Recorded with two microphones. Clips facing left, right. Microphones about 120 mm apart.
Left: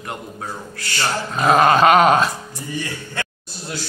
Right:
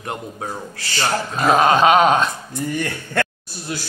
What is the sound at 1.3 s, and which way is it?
Dog, centre (ahead or behind).